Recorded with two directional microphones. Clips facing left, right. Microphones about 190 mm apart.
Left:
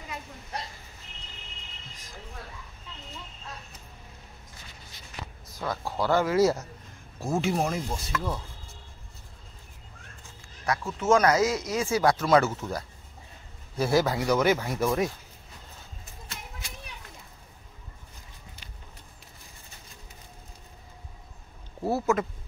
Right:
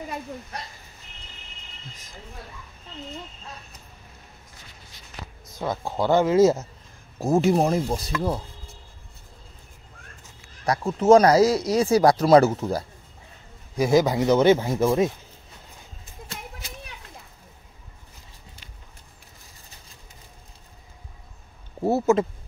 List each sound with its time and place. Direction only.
5.6 s speech: 20° right (ahead or behind)
7.2 s speech: 40° right (ahead or behind)
10.6 s speech: 35° right (ahead or behind)
13.7 s speech: 15° right (ahead or behind)
21.8 s speech: 25° right (ahead or behind)